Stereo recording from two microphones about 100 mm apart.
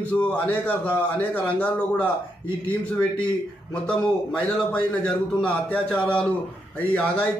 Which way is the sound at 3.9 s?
10° left (ahead or behind).